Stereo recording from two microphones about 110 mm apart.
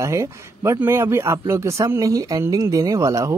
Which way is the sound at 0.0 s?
25° right (ahead or behind).